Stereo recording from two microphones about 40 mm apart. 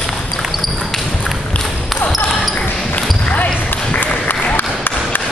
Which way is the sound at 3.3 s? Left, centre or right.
Left.